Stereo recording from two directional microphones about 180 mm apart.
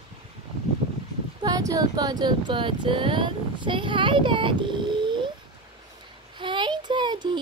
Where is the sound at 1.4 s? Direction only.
20° right (ahead or behind).